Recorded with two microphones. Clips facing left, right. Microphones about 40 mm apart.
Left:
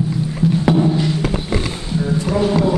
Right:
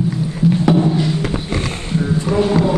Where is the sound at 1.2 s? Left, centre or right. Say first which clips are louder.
Even; right.